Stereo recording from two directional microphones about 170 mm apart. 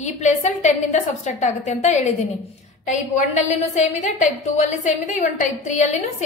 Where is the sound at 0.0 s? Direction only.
45° left (ahead or behind).